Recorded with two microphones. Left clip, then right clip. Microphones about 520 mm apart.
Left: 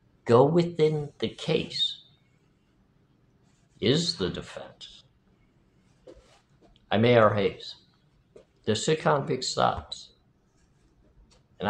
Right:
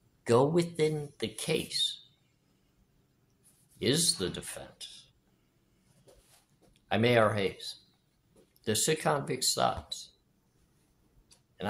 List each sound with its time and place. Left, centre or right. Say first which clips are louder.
0.2 s speech: left 5 dB; right
3.8 s speech: left 3 dB; right
6.9 s speech: left 5 dB; right